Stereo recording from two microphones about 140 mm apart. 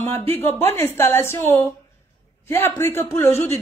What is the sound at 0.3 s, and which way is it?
A man's voice, 15° left (ahead or behind).